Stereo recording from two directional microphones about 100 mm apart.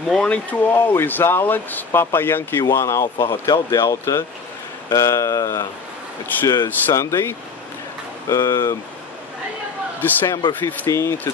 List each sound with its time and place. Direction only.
0.1 s speech: 10° left (ahead or behind); by 8.7 s 30° left (ahead or behind)
9.9 s speech: 20° left (ahead or behind)
10.9 s speech: 30° left (ahead or behind)